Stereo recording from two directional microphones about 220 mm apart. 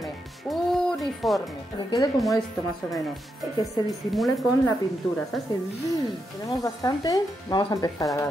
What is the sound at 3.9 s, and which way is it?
Speech, centre (ahead or behind).